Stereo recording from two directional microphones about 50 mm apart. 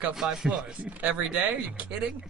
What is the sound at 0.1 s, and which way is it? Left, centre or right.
Speech, centre.